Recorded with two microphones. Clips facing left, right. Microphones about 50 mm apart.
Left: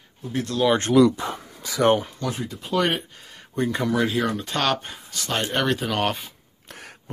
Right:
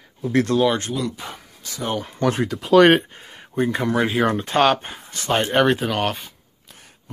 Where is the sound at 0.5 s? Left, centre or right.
Right.